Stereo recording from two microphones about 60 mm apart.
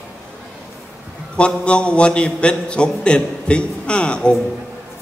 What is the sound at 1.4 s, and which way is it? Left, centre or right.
A man's voice, centre.